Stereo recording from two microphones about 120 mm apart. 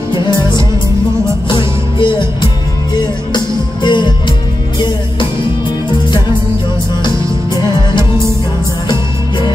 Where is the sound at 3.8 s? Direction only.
40° left (ahead or behind).